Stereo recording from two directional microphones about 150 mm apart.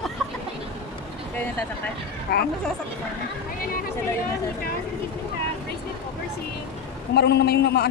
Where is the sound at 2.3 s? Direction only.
90° left.